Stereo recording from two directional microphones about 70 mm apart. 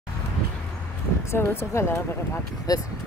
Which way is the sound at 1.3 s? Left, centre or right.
Left.